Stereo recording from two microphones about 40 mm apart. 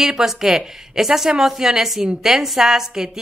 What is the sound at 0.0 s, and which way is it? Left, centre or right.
A woman's voice, centre.